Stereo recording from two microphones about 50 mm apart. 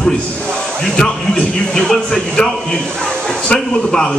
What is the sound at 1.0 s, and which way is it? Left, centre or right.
A man's voice, centre.